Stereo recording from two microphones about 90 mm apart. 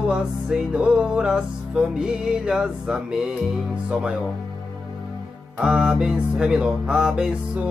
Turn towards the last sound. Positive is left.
turn(degrees=-10)  # may be behind; listen again after turning